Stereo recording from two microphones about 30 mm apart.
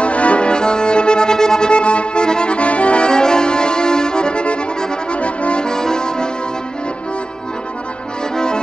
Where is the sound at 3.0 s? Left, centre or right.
Left.